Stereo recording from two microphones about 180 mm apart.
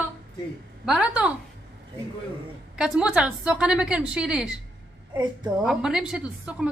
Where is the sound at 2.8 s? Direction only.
5° right (ahead or behind).